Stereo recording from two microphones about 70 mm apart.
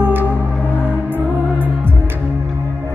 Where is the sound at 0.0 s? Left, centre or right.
Right.